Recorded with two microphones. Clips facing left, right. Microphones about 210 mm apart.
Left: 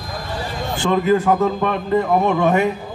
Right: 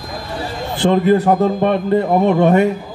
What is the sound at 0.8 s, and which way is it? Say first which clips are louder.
A man's voice: right 4 dB; 35° right (ahead or behind).